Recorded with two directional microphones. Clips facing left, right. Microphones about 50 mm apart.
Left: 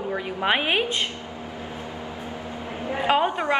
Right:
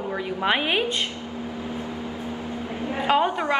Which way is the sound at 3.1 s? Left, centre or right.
Centre.